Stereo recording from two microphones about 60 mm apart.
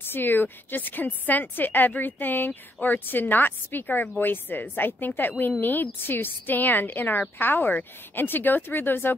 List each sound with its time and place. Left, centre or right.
0.0 s a woman's voice: left